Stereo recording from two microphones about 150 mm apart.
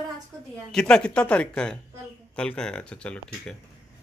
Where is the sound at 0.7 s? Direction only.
5° left (ahead or behind).